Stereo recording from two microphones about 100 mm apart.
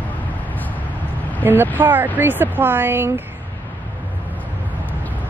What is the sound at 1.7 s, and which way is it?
Speech, 20° right (ahead or behind).